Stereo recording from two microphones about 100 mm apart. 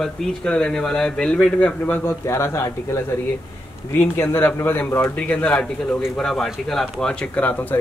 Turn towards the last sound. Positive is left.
turn(degrees=20)  # may be behind; listen again after turning